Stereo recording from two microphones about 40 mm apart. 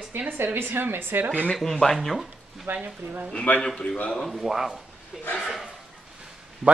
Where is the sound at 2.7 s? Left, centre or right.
Right.